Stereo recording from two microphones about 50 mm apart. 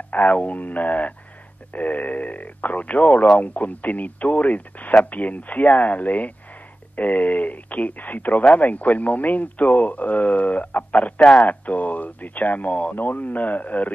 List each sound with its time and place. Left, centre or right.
0.1 s speech: left
11.1 s speech: centre
11.4 s speech: left